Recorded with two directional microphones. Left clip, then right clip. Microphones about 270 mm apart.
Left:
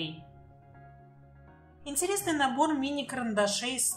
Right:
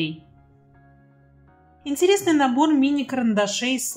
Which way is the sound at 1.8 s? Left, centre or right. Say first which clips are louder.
Right 13 dB; centre.